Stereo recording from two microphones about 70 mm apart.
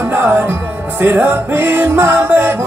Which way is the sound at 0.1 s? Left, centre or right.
Right.